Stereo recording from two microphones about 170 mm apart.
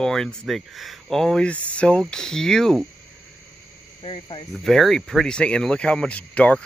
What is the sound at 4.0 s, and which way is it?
Cricket, 30° left (ahead or behind).